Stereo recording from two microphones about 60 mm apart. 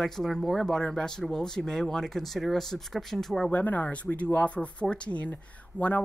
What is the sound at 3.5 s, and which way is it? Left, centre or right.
Speech, left.